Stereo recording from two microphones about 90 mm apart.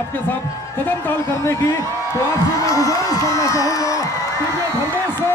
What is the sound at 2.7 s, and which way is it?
Speech, 40° left (ahead or behind).